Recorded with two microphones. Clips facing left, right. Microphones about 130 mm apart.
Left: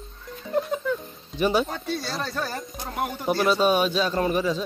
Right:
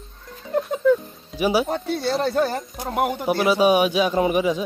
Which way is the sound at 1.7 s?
60° right (ahead or behind).